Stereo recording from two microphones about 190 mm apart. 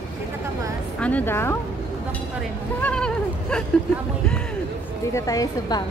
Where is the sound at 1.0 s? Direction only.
10° left (ahead or behind).